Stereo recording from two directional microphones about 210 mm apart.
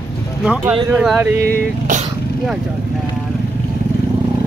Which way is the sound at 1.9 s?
35° right (ahead or behind).